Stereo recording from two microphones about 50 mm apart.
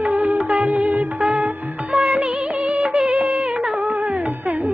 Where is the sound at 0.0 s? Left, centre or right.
Right.